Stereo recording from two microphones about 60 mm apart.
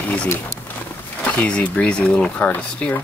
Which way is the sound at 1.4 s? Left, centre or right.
Centre.